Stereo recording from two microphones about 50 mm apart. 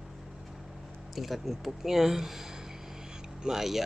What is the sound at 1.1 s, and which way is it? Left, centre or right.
Speech, centre.